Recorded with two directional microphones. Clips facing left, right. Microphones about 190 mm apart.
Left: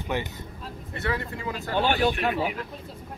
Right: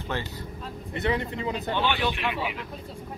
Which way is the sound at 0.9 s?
20° right (ahead or behind).